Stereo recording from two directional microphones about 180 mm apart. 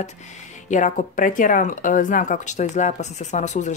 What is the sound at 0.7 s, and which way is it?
Speech, 45° left (ahead or behind).